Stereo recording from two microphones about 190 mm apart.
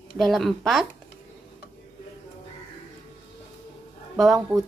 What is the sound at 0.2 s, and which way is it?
Speech, centre (ahead or behind).